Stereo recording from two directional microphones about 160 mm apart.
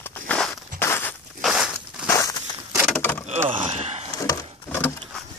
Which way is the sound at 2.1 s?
20° left (ahead or behind).